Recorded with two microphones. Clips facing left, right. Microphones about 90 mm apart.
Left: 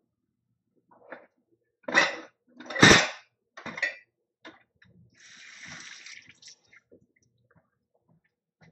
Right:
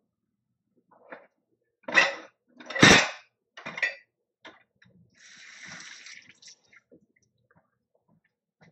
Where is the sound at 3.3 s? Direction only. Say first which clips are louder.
Left 1 dB; 30° left (ahead or behind).